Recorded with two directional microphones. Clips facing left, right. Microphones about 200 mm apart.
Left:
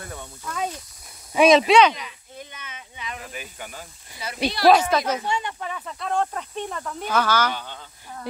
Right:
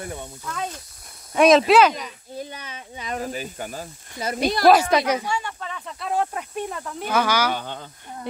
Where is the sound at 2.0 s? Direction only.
40° right (ahead or behind).